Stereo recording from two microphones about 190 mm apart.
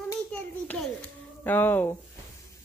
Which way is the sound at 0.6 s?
5° left (ahead or behind).